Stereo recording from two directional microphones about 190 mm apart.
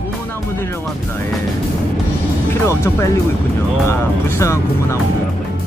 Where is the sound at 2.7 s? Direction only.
15° left (ahead or behind).